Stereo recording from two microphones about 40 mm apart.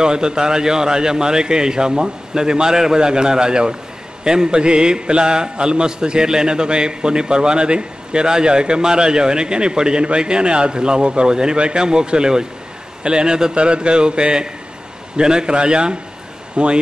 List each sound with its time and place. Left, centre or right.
0.0 s a man's voice: centre